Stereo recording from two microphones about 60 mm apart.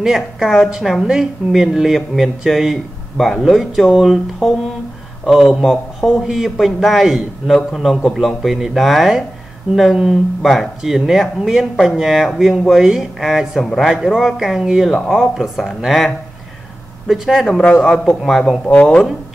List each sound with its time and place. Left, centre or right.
0.0 s speech: centre
17.1 s speech: centre
17.5 s a man's voice: centre
18.7 s speech: left